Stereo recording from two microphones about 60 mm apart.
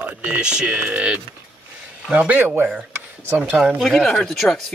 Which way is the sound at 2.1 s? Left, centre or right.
Right.